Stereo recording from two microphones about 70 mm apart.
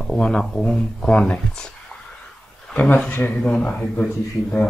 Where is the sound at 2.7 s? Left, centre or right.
Centre.